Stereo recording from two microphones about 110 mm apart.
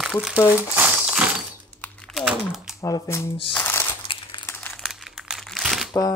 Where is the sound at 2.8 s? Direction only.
30° left (ahead or behind).